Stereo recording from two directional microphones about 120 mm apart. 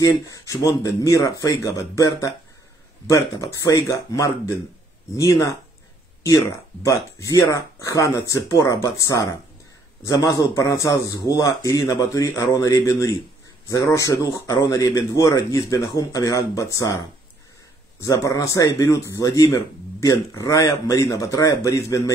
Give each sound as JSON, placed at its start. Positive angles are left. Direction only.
{"t": 0.0, "sound": "speech", "side_deg": 25}